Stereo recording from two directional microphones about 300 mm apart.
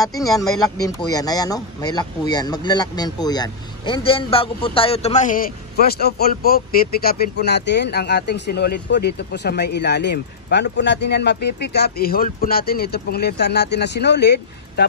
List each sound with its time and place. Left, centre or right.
0.2 s speech: centre; by 14.9 s left